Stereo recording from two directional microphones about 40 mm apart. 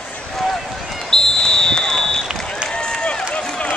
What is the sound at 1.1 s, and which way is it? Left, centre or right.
Basketball bounce, centre.